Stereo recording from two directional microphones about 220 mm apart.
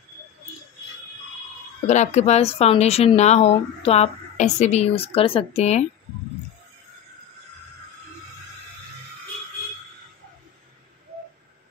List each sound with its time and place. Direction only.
1.9 s speech: 30° left (ahead or behind)